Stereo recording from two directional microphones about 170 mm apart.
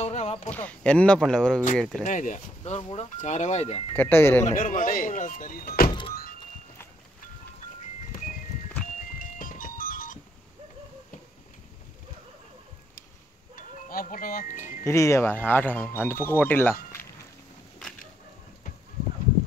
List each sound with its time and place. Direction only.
0.0 s a sound: 40° left (ahead or behind)
0.5 s speech: 10° left (ahead or behind)
2.0 s speech: 50° left (ahead or behind)
3.9 s speech: 10° left (ahead or behind)
4.5 s speech: 50° left (ahead or behind)
5.9 s vehicle: 30° left (ahead or behind)
9.2 s music: 50° left (ahead or behind)
13.6 s music: 55° left (ahead or behind)
14.9 s speech: 15° left (ahead or behind)